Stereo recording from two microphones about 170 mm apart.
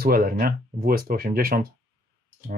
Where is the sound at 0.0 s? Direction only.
60° right (ahead or behind).